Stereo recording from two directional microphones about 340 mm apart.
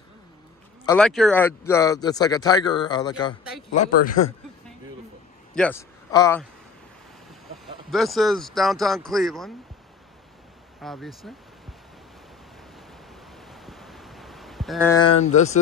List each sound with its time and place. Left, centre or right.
0.8 s speech: centre
3.7 s speech: left
5.5 s a man's voice: centre
7.5 s speech: centre
10.8 s speech: centre
13.5 s a sound: centre